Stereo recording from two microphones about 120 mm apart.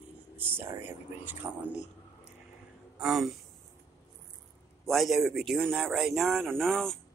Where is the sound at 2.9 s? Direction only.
5° right (ahead or behind).